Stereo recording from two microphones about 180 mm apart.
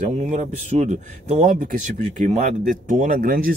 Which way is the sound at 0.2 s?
40° right (ahead or behind).